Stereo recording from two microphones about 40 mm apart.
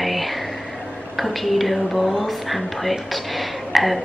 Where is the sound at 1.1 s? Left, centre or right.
Centre.